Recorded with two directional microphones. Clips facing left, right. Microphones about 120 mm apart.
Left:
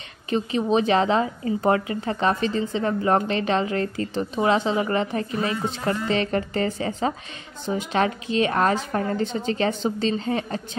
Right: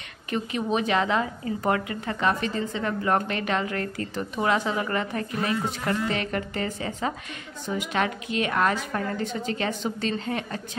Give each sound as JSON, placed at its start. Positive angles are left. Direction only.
{"t": 0.3, "sound": "a woman's voice", "side_deg": 30}